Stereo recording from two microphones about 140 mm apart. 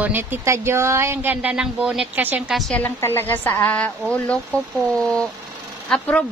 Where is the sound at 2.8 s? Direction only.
15° left (ahead or behind).